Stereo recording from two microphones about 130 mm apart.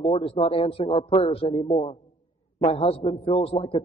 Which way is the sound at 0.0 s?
45° left (ahead or behind).